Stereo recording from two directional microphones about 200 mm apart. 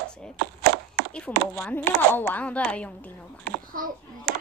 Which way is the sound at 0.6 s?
55° right (ahead or behind).